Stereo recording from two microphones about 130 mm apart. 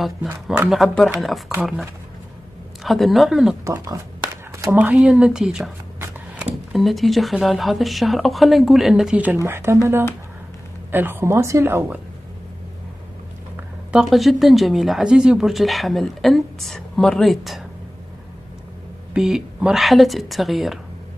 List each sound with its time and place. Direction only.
0.0 s speech: centre (ahead or behind)
3.6 s speech: 20° right (ahead or behind)
4.7 s speech: 10° right (ahead or behind)
13.9 s speech: centre (ahead or behind)
19.1 s speech: 5° right (ahead or behind)